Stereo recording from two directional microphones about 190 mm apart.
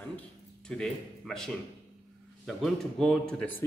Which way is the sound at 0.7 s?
5° left (ahead or behind).